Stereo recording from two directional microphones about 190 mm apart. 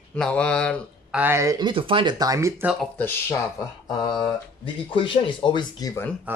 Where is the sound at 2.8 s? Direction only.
10° left (ahead or behind).